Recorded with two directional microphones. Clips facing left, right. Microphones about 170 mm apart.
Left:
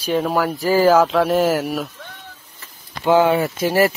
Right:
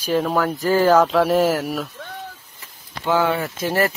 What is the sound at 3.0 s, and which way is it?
Speech, 20° left (ahead or behind).